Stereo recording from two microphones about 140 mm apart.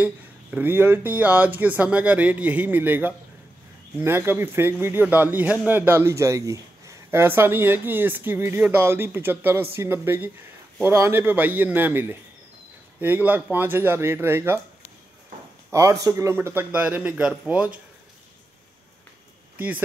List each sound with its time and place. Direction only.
0.0 s a man's voice: 10° right (ahead or behind)
15.7 s speech: 20° right (ahead or behind)
19.5 s speech: 10° right (ahead or behind)